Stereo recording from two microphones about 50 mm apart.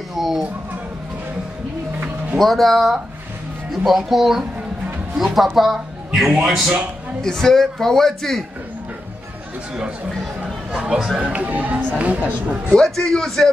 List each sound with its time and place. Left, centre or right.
0.1 s a sound: centre
2.3 s speech: centre
7.2 s a man's voice: centre
10.7 s speech: centre
11.3 s speech: right
12.7 s a man's voice: centre